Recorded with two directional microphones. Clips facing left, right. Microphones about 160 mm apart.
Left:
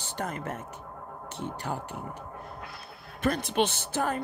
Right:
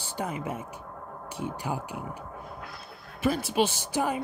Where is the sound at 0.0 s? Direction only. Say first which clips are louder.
Right 1 dB; 10° right (ahead or behind).